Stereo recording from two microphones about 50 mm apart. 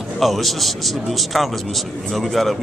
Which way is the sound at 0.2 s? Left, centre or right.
Centre.